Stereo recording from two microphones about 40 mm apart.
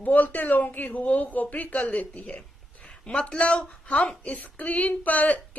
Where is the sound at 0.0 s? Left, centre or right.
Left.